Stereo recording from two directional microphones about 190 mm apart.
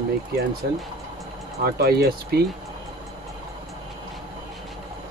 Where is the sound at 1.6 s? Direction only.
55° right (ahead or behind).